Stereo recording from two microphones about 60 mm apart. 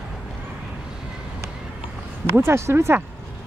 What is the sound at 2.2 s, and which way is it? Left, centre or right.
Speech, right.